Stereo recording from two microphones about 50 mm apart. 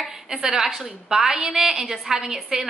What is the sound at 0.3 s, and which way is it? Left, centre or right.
A woman's voice, centre.